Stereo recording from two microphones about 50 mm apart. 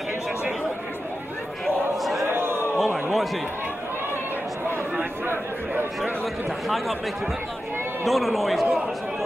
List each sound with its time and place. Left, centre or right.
2.2 s a sound: right
2.8 s a man's voice: centre
5.2 s speech: right
8.0 s a man's voice: centre